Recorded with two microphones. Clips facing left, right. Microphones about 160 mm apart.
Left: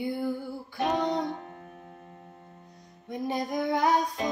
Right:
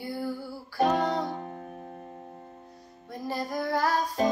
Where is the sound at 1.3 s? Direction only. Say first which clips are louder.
Right 1 dB; 35° right (ahead or behind).